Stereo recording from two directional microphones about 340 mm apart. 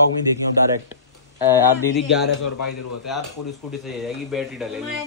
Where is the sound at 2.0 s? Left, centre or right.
Left.